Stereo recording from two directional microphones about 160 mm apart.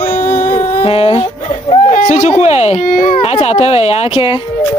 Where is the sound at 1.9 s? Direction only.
50° left (ahead or behind).